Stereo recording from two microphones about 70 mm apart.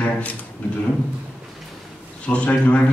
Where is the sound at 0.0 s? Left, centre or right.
Left.